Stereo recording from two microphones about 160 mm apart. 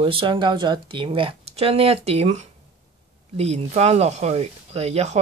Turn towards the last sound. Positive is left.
turn(degrees=-40)  # may be behind; listen again after turning